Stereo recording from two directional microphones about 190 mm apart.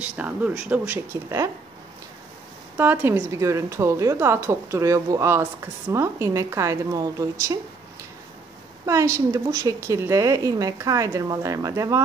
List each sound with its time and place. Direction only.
0.0 s a woman's voice: 5° right (ahead or behind)
2.8 s a woman's voice: 10° right (ahead or behind)
8.8 s a woman's voice: 15° right (ahead or behind)